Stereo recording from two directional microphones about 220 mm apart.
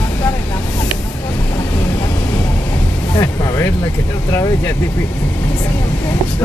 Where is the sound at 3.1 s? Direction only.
15° left (ahead or behind).